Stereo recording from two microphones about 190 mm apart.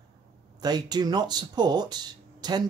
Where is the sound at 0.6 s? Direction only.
20° right (ahead or behind).